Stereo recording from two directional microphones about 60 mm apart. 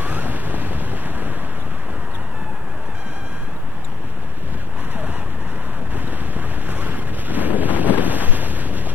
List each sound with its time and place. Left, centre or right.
0.0 s waves: right
5.9 s wind noise: right